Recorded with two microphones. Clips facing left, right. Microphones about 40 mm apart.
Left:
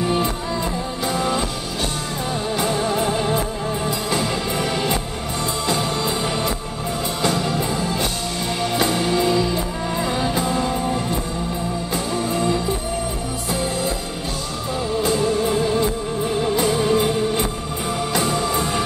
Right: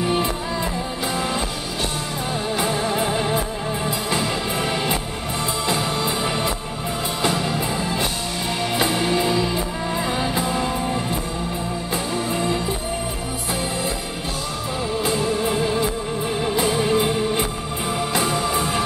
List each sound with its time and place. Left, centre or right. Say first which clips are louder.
0.0 s music: left 1 dB; centre
2.5 s music: left 1 dB; centre
15.1 s music: left 2 dB; centre